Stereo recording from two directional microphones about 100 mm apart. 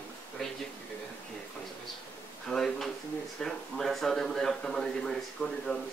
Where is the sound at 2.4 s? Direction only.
5° left (ahead or behind).